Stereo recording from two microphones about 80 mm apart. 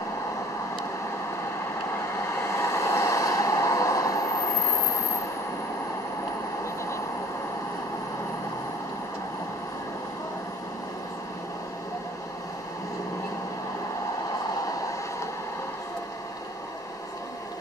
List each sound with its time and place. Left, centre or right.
2.4 s vehicle: left